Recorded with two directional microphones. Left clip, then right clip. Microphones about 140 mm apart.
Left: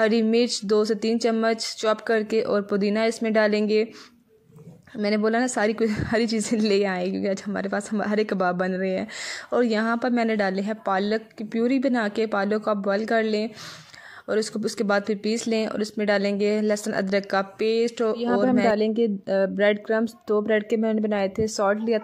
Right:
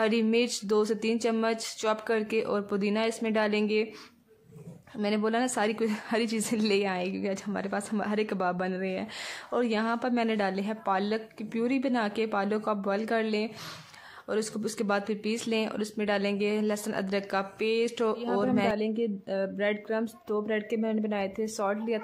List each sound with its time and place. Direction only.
0.0 s a woman's voice: 30° left (ahead or behind)
5.0 s a woman's voice: 30° left (ahead or behind)
18.1 s speech: 50° left (ahead or behind)
18.4 s a woman's voice: 25° left (ahead or behind)
18.8 s speech: 50° left (ahead or behind)